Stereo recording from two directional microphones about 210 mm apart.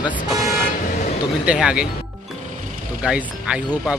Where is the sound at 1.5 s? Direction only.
5° right (ahead or behind).